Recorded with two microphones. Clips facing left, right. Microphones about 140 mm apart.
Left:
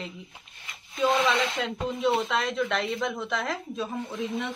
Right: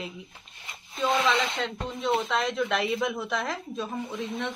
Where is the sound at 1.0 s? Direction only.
5° left (ahead or behind).